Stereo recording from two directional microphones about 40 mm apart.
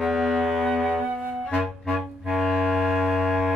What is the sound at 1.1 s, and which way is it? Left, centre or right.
Music, right.